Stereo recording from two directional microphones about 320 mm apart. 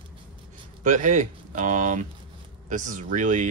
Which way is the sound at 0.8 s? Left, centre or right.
Right.